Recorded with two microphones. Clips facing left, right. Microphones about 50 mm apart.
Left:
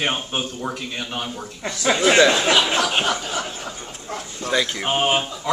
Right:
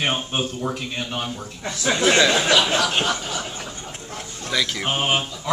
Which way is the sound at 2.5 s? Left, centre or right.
Left.